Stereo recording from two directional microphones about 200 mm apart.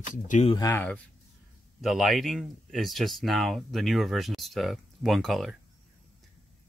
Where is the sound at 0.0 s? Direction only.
40° left (ahead or behind).